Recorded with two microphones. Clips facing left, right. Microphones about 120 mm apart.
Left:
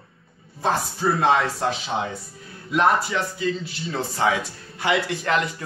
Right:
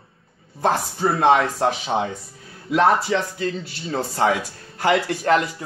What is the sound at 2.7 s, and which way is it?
Speech, 90° right.